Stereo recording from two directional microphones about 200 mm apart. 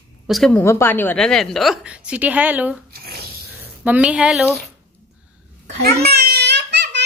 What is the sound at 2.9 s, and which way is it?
Snort, 50° right (ahead or behind).